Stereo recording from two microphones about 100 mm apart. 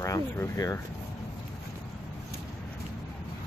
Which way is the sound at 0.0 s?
30° left (ahead or behind).